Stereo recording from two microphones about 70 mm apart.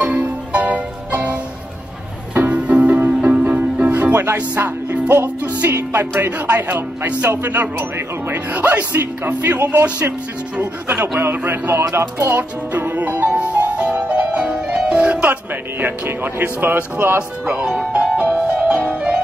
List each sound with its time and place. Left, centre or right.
0.0 s music: centre
5.1 s speech: right
5.6 s music: right
8.3 s speech: right
11.0 s music: right
11.3 s speech: right
11.9 s music: right; by 15.3 s centre
15.8 s speech: right
17.5 s music: centre